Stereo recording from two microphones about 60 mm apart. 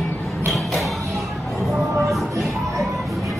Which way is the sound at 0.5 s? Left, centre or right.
Centre.